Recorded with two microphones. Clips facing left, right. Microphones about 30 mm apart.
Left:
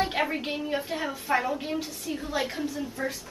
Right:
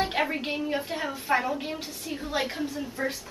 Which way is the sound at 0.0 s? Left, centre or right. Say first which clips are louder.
Even; centre.